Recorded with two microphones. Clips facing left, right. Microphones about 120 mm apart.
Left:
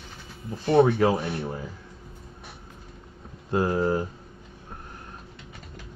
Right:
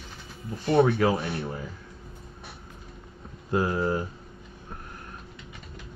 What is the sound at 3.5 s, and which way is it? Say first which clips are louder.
Speech: left 2 dB; 30° left (ahead or behind).